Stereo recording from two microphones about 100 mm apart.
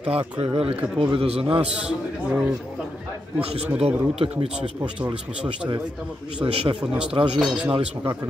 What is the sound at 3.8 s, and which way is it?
Speech, 70° right (ahead or behind).